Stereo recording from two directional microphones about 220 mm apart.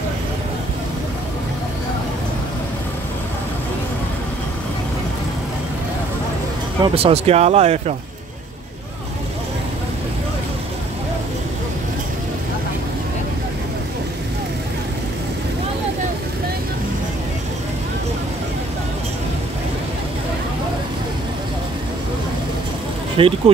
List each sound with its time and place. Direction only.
6.8 s speech: 25° right (ahead or behind)
23.1 s speech: 25° right (ahead or behind)